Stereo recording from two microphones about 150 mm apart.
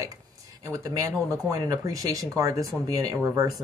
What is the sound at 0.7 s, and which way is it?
Speech, 20° right (ahead or behind).